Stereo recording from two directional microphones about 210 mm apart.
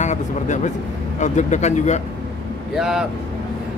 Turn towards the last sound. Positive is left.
turn(degrees=0)  # may be behind; listen again after turning